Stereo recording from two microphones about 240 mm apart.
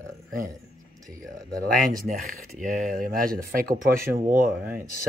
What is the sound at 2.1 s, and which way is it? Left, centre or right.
Speech, right.